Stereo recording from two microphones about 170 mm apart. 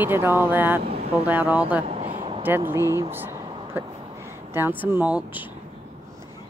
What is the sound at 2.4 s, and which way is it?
Speech, 10° right (ahead or behind).